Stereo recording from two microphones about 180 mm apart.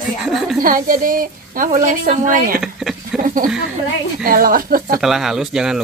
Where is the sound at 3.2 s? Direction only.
50° right (ahead or behind).